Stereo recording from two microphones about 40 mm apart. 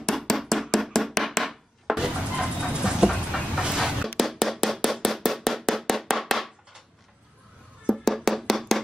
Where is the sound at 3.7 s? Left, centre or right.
Centre.